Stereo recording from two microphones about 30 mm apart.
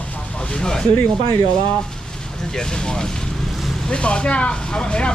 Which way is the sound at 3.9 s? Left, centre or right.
Left.